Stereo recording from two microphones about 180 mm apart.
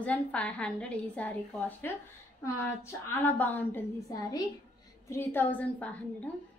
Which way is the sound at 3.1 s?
10° left (ahead or behind).